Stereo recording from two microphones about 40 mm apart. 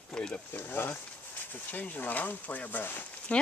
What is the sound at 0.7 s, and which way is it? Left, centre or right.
Speech, left.